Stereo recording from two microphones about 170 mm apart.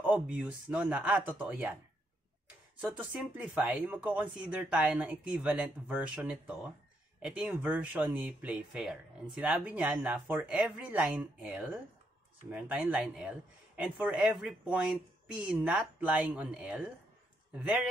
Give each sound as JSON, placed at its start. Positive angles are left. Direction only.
{"t": 0.0, "sound": "speech", "side_deg": -5}
{"t": 2.8, "sound": "speech", "side_deg": -5}